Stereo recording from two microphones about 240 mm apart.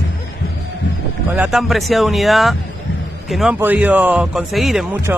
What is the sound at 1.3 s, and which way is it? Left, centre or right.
A man's voice, centre.